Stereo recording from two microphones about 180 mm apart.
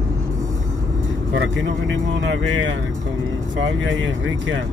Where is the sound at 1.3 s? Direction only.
90° right.